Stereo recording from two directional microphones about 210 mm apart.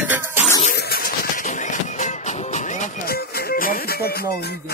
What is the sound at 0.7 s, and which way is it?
Music, 45° left (ahead or behind).